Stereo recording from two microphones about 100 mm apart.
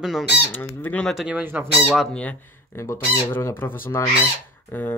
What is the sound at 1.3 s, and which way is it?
Speech, 15° right (ahead or behind).